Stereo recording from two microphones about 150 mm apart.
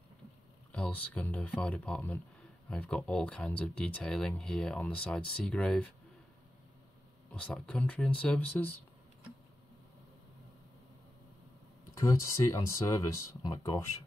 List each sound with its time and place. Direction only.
0.7 s speech: 10° left (ahead or behind)
7.2 s speech: 10° left (ahead or behind)
11.9 s speech: 20° left (ahead or behind)